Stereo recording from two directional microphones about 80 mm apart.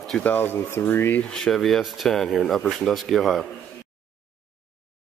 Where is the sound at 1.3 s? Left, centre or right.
Centre.